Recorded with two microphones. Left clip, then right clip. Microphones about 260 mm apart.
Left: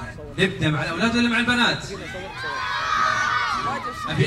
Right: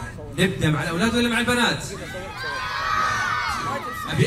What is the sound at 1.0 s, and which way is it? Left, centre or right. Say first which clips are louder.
Speech: left 1 dB; left.